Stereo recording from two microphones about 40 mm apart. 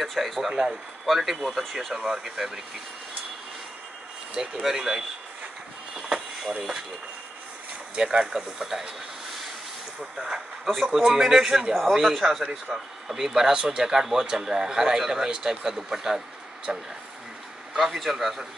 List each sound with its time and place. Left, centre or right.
0.0 s speech: centre
0.5 s speech: centre
1.0 s speech: centre
2.0 s speech: centre
4.6 s speech: centre
5.9 s vehicle: centre
7.9 s speech: right
10.2 s speech: centre
16.7 s speech: right
17.7 s speech: centre